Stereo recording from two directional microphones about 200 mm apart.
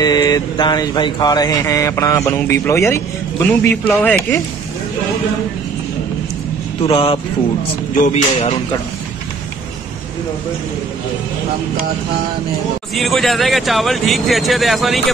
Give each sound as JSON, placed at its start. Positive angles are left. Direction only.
{"t": 0.0, "sound": "mantra", "side_deg": 20}
{"t": 6.9, "sound": "speech", "side_deg": 25}
{"t": 12.9, "sound": "a man's voice", "side_deg": 0}